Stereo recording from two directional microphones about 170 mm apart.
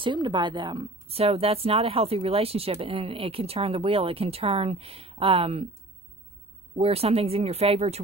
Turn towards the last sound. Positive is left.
turn(degrees=-40)  # may be behind; listen again after turning